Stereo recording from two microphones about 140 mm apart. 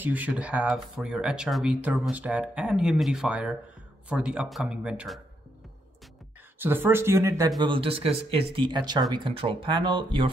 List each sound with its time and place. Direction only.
0.0 s speech: 10° right (ahead or behind)
6.6 s speech: 15° right (ahead or behind); by 10.3 s 35° right (ahead or behind)